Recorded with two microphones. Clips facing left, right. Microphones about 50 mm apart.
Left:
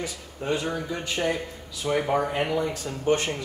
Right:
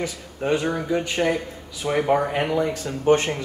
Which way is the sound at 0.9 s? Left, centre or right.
Right.